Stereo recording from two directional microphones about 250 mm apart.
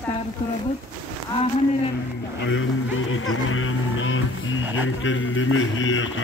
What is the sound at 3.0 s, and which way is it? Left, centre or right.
Speech, left.